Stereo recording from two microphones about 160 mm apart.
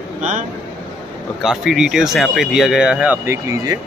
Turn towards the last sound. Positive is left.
turn(degrees=-20)  # may be behind; listen again after turning